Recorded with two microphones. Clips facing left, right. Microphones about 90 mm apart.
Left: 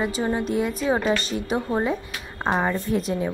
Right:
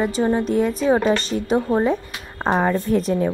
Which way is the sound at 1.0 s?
35° right (ahead or behind).